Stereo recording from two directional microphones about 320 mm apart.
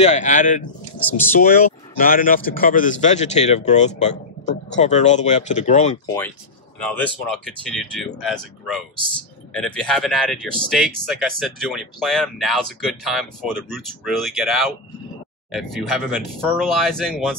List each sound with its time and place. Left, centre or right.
0.0 s a man's voice: left
0.9 s speech: centre
2.0 s a man's voice: left
6.8 s speech: centre